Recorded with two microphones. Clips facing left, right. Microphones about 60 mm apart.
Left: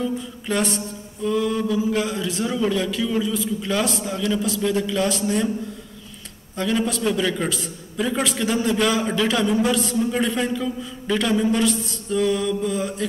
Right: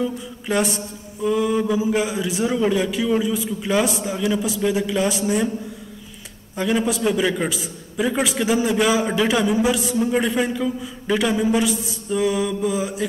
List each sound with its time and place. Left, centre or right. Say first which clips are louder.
0.0 s a man's voice: right 1 dB; centre
6.5 s a man's voice: right 2 dB; centre